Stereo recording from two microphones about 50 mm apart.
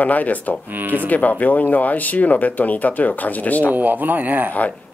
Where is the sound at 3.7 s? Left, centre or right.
Right.